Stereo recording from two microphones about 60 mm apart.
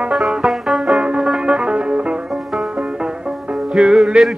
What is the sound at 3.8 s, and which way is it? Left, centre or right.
Music, centre.